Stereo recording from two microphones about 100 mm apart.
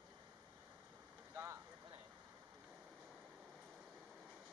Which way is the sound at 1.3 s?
30° right (ahead or behind).